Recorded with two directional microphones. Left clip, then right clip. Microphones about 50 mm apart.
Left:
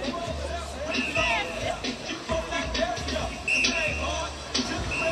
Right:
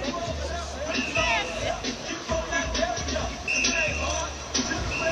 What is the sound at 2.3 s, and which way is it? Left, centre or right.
Music, left.